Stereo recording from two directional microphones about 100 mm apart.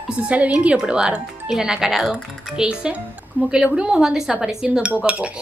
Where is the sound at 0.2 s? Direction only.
10° right (ahead or behind).